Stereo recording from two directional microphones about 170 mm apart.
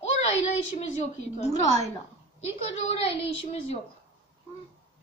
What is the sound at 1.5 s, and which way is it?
Speech, 20° left (ahead or behind).